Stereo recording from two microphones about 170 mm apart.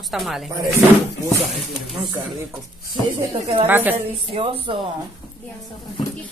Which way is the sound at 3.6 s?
10° right (ahead or behind).